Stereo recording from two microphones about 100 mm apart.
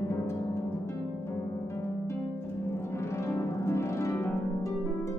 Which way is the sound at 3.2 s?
30° left (ahead or behind).